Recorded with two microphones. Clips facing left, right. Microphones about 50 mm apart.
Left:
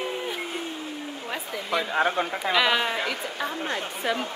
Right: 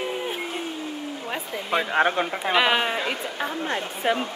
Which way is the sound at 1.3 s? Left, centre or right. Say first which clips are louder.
Right 2 dB; right.